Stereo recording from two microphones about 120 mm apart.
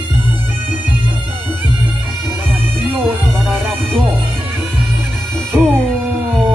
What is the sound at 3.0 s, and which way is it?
Music, 5° left (ahead or behind).